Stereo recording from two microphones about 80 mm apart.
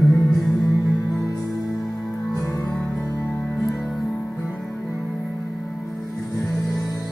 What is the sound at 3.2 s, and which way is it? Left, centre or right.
Music, left.